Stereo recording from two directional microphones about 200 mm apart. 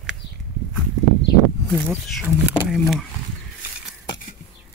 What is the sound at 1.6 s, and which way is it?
Speech, 5° left (ahead or behind).